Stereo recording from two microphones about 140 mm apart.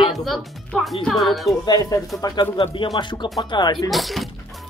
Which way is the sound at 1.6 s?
25° left (ahead or behind).